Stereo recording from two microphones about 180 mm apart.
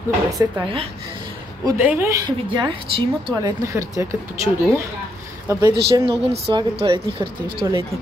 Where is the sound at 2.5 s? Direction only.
25° right (ahead or behind).